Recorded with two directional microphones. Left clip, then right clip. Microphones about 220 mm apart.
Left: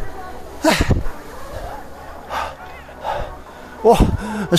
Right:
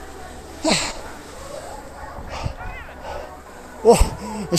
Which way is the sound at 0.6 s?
20° left (ahead or behind).